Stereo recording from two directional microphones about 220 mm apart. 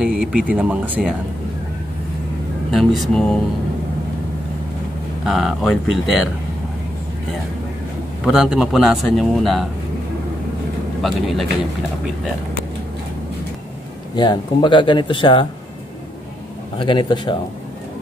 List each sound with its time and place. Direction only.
0.0 s a man's voice: 5° right (ahead or behind)
2.7 s a man's voice: centre (ahead or behind)
5.2 s a man's voice: centre (ahead or behind)
8.2 s a man's voice: centre (ahead or behind)
11.0 s a man's voice: centre (ahead or behind)
14.1 s speech: 20° left (ahead or behind)
16.7 s speech: 20° left (ahead or behind)